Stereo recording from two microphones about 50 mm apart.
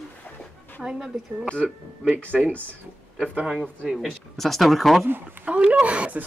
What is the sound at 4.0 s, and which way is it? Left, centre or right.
Speech, centre.